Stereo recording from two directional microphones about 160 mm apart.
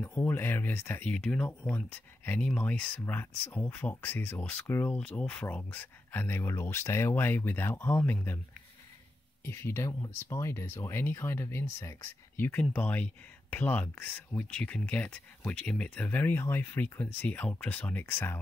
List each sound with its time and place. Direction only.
0.0 s speech: 10° left (ahead or behind)
9.4 s speech: 15° left (ahead or behind)